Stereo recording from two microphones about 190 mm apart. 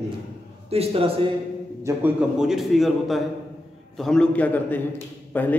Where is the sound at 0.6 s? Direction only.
30° right (ahead or behind).